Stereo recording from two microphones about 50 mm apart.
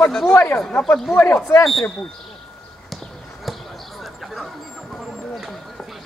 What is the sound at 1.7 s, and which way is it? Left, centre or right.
Speech, centre.